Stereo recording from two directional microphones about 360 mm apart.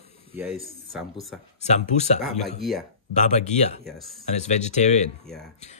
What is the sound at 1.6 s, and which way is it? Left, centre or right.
Speech, centre.